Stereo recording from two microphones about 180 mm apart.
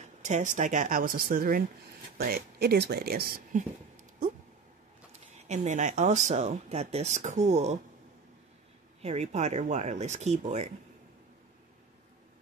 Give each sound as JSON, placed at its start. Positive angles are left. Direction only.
{"t": 0.0, "sound": "speech", "side_deg": -40}
{"t": 5.3, "sound": "speech", "side_deg": -40}
{"t": 9.0, "sound": "speech", "side_deg": -40}